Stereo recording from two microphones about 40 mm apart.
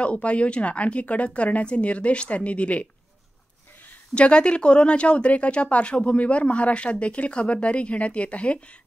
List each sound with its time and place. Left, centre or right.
0.0 s speech: left
4.1 s speech: left